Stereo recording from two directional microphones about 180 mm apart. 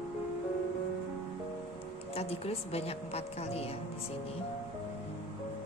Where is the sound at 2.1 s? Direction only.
35° left (ahead or behind).